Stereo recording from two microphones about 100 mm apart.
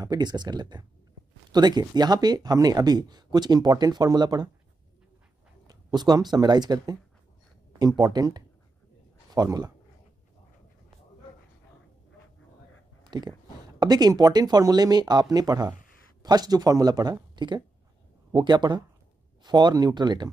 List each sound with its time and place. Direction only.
0.0 s speech: 45° right (ahead or behind)
5.7 s speech: 45° right (ahead or behind)
13.0 s speech: 45° right (ahead or behind)